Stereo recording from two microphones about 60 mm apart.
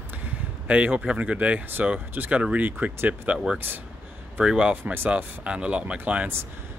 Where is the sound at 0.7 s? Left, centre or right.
Right.